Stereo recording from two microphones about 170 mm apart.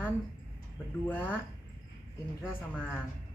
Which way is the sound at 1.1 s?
10° left (ahead or behind).